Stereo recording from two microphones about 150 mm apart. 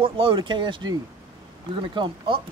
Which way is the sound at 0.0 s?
35° right (ahead or behind).